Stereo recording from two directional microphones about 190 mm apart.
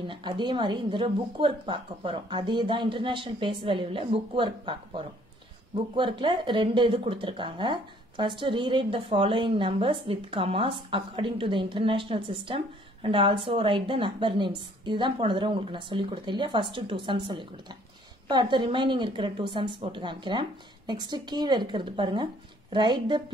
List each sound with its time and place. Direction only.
0.0 s speech: 25° right (ahead or behind)